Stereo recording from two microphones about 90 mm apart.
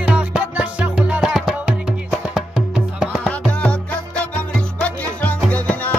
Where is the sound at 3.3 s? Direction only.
15° left (ahead or behind).